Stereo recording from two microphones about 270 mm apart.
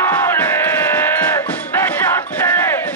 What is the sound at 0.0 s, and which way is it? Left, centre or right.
Music, centre.